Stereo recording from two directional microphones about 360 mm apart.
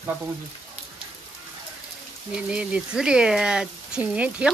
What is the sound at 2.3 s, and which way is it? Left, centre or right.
Speech, centre.